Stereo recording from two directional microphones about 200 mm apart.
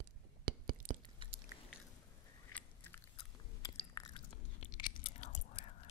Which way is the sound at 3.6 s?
15° left (ahead or behind).